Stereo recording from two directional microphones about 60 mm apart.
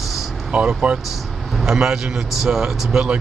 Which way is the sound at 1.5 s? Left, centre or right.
Centre.